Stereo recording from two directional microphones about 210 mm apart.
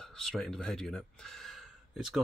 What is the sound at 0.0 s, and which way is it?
Speech, centre (ahead or behind).